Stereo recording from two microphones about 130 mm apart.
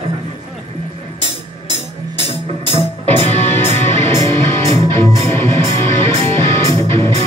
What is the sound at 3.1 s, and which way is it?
Music, 20° left (ahead or behind).